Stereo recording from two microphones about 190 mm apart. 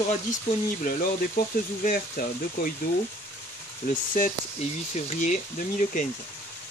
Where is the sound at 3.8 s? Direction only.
45° left (ahead or behind).